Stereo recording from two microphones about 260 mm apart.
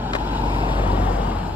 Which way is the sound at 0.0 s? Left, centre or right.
Centre.